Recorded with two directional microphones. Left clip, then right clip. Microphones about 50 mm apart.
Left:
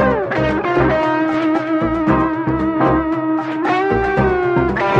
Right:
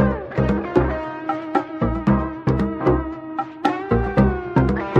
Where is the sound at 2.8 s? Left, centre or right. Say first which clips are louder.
Left 6 dB; right.